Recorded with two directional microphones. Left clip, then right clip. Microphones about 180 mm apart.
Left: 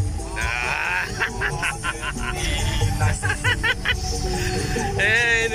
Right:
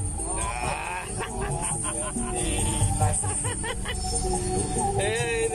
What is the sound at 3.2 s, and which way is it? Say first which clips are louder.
Music: left 11 dB; 20° right (ahead or behind).